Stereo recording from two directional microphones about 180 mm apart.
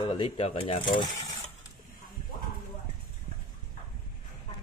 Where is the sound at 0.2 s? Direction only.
30° left (ahead or behind).